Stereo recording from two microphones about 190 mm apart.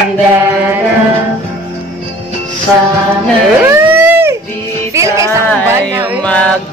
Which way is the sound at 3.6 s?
10° right (ahead or behind).